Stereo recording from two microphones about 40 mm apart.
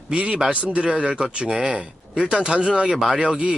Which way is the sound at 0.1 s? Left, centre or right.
Right.